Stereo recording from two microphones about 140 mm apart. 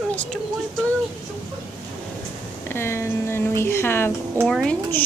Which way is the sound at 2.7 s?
20° left (ahead or behind).